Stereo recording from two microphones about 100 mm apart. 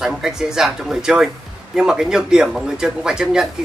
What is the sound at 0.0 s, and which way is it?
Speech, 5° right (ahead or behind).